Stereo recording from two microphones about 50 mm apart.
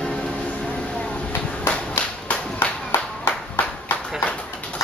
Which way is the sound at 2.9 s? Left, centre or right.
Left.